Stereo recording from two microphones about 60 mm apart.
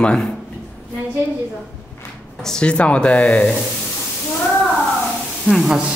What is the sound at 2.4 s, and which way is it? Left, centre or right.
Speech, centre.